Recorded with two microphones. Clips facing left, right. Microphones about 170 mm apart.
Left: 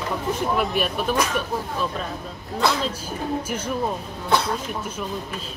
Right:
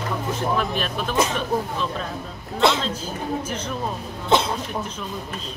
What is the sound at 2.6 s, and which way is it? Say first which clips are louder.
Speech: right 3 dB; 25° right (ahead or behind).